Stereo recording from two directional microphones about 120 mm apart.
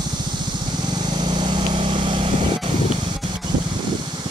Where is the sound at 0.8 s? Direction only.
35° right (ahead or behind).